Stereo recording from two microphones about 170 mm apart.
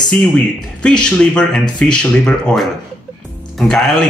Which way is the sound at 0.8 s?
5° left (ahead or behind).